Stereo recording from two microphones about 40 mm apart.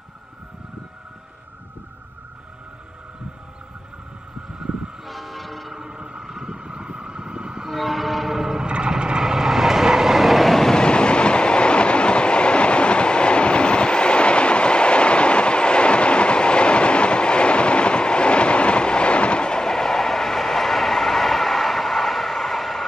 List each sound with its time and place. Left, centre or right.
4.7 s train: right
5.0 s train: centre
5.8 s vehicle: centre
6.5 s vehicle: right
7.7 s train: centre
8.6 s vehicle: right; by 10.7 s centre
10.7 s train: left; by 22.8 s centre